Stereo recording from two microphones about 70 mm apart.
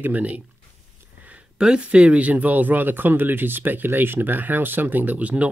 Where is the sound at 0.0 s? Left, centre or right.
Right.